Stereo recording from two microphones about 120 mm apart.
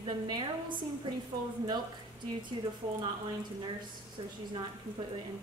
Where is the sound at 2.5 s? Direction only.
45° right (ahead or behind).